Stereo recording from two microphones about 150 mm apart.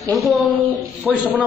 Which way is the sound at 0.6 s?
10° right (ahead or behind).